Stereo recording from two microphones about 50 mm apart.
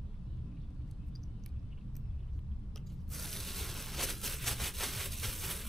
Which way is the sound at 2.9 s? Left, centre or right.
Centre.